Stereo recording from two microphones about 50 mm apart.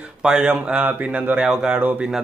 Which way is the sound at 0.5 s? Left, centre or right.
Right.